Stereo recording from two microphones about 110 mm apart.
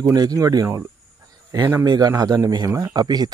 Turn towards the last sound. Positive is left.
turn(degrees=-40)  # may be behind; listen again after turning